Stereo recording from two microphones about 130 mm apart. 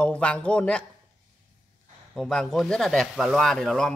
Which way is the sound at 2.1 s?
5° left (ahead or behind).